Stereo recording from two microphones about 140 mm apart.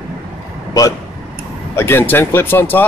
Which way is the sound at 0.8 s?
25° left (ahead or behind).